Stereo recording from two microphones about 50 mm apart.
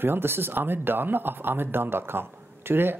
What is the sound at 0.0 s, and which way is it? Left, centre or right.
Speech, right.